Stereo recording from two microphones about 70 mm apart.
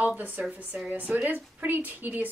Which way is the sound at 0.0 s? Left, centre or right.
Right.